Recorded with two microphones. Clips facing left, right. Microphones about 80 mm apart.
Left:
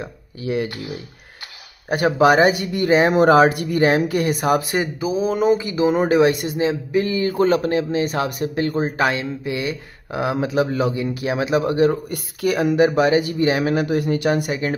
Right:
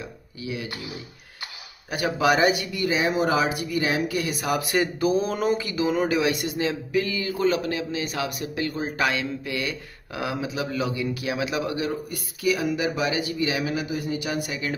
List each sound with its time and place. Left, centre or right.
0.0 s speech: left
1.9 s speech: left
4.6 s speech: left
5.0 s speech: centre; by 12.0 s left
12.1 s speech: left